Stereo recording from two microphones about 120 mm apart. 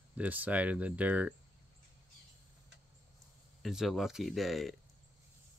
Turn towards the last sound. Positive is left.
turn(degrees=0)  # may be behind; listen again after turning